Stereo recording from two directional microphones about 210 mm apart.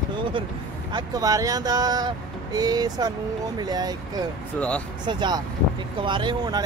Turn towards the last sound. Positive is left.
turn(degrees=-20)  # may be behind; listen again after turning